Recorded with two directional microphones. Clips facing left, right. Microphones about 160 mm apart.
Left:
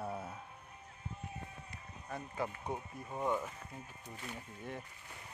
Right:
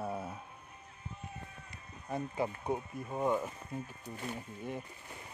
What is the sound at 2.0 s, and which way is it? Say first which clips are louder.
Speech: right 5 dB; 15° right (ahead or behind).